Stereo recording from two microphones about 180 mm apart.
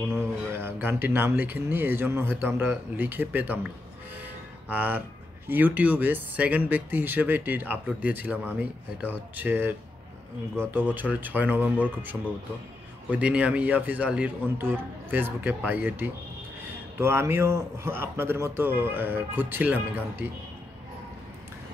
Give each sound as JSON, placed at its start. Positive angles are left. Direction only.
{"t": 0.5, "sound": "a man's voice", "side_deg": -10}
{"t": 4.2, "sound": "music", "side_deg": -10}
{"t": 5.5, "sound": "a man's voice", "side_deg": -10}